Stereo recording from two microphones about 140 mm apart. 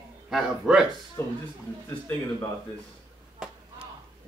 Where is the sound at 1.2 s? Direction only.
20° left (ahead or behind).